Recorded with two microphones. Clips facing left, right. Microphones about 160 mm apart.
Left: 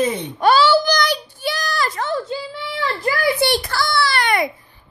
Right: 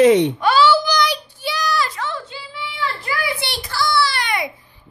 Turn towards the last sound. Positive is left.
turn(degrees=55)  # may be behind; listen again after turning